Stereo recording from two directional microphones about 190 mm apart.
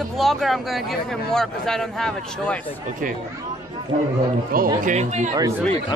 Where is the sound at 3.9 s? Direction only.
35° right (ahead or behind).